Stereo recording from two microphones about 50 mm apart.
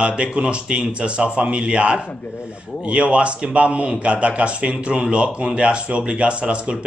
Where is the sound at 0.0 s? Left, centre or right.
Right.